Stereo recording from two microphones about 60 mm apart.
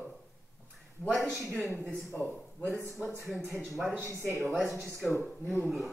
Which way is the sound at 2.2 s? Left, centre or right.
Left.